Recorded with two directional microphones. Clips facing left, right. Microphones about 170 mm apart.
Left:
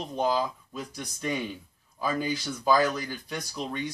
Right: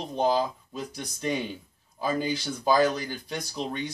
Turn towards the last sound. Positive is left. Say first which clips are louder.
# right 2 dB
turn(degrees=-25)  # may be behind; listen again after turning